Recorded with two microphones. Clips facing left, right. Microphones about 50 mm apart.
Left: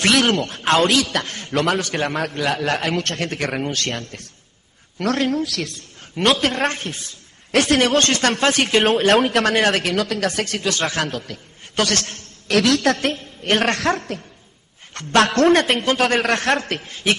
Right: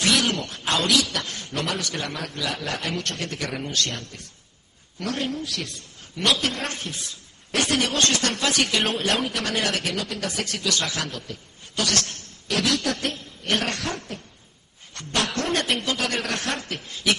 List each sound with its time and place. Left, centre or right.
0.0 s a man's voice: left
1.8 s a man's voice: left
4.9 s a man's voice: left
6.1 s a man's voice: left
7.5 s a man's voice: left
9.9 s a man's voice: left
11.1 s a man's voice: left
12.4 s a man's voice: left
13.1 s a woman's voice: left
13.7 s a man's voice: left
15.5 s a man's voice: left
16.9 s speech: left